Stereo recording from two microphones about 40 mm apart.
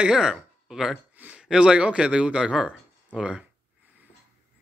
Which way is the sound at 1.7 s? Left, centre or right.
Right.